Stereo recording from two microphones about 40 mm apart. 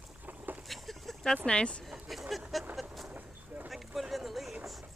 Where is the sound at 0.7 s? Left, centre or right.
Centre.